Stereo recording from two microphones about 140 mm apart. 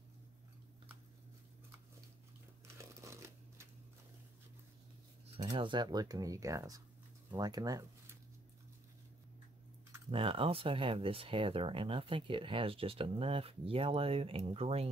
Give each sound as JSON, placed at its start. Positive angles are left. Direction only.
{"t": 2.8, "sound": "crumpling", "side_deg": -20}
{"t": 5.4, "sound": "speech", "side_deg": -30}
{"t": 10.1, "sound": "speech", "side_deg": -40}